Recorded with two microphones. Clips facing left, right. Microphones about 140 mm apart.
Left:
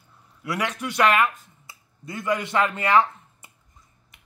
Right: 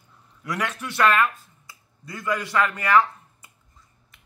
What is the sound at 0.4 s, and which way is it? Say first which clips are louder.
Speech: left 1 dB; 10° left (ahead or behind).